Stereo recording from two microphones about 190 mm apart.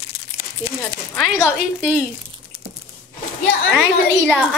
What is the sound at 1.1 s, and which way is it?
Speech, 10° left (ahead or behind).